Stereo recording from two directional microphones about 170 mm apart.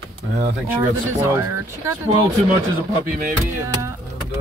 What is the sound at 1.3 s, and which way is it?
Speech, 15° right (ahead or behind).